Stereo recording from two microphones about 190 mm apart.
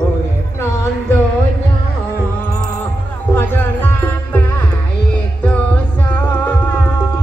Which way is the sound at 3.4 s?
10° left (ahead or behind).